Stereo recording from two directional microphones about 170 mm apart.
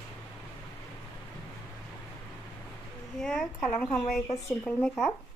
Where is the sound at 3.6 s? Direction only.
20° left (ahead or behind).